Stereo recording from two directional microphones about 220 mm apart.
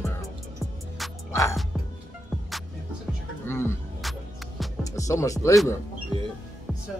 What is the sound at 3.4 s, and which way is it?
Music, 10° left (ahead or behind).